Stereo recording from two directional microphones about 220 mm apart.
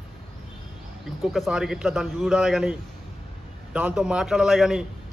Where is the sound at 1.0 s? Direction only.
Centre (ahead or behind).